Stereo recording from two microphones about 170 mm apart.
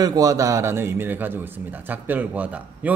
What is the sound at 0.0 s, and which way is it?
A man's voice, 20° right (ahead or behind).